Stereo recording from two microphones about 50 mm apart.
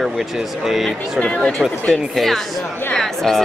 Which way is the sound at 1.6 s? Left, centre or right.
Centre.